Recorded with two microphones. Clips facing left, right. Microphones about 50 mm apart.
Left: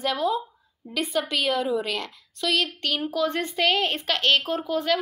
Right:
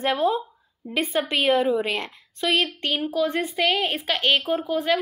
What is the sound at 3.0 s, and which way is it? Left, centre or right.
A woman's voice, centre.